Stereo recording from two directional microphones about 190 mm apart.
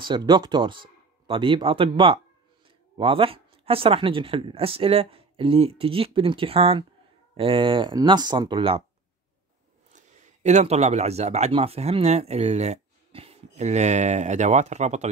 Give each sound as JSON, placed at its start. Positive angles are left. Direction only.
{"t": 0.0, "sound": "speech", "side_deg": -25}
{"t": 9.9, "sound": "speech", "side_deg": -35}